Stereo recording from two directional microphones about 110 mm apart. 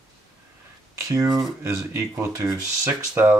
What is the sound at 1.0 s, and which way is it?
Speech, 30° right (ahead or behind).